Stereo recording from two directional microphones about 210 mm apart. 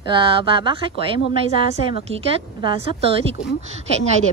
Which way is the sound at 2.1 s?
30° right (ahead or behind).